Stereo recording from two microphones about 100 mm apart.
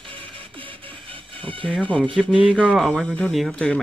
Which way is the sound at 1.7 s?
10° left (ahead or behind).